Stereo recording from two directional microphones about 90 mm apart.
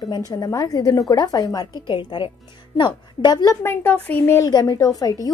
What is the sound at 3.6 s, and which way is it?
Speech, 20° left (ahead or behind).